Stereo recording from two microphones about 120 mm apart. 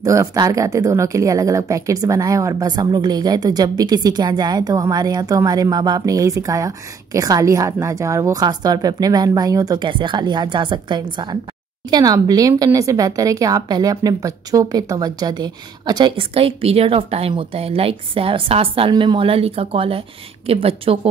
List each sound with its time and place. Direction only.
0.0 s speech: 25° right (ahead or behind)
16.3 s a woman's voice: 55° right (ahead or behind)